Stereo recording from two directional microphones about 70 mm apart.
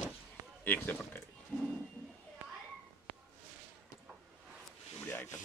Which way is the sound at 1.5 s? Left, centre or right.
Left.